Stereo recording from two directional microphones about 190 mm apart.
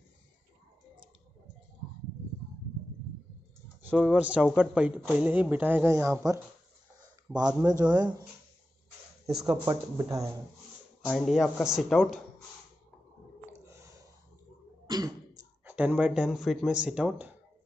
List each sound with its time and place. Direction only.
3.8 s speech: 5° right (ahead or behind)
7.3 s a sound: 10° right (ahead or behind)
7.8 s speech: 20° right (ahead or behind)
9.5 s speech: 20° right (ahead or behind)
11.1 s speech: centre (ahead or behind)
13.7 s a sound: 15° right (ahead or behind)
14.9 s beatboxing: 20° right (ahead or behind)
15.7 s speech: 5° right (ahead or behind)